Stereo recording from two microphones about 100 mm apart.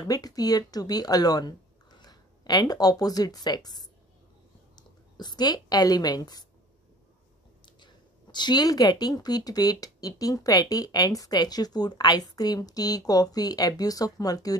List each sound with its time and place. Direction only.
0.1 s a woman's voice: 40° left (ahead or behind)
7.6 s speech: 50° left (ahead or behind)